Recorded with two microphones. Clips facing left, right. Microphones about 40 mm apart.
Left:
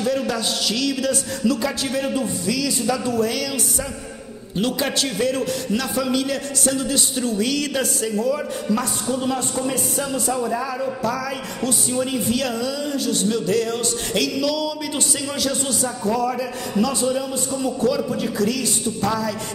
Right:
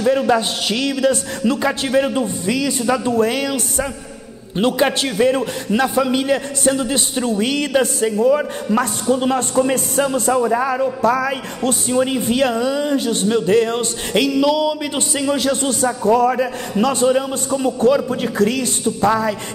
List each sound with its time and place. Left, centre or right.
0.3 s a man's voice: right
4.6 s a man's voice: right